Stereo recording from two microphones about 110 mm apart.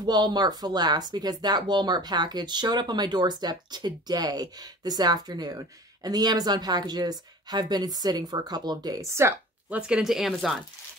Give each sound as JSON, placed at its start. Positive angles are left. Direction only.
{"t": 0.0, "sound": "speech", "side_deg": -40}
{"t": 9.7, "sound": "speech", "side_deg": -10}